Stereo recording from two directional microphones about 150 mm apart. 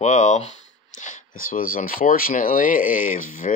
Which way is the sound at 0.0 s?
50° left (ahead or behind).